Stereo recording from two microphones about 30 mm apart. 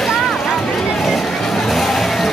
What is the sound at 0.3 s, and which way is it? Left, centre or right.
Vehicle, centre.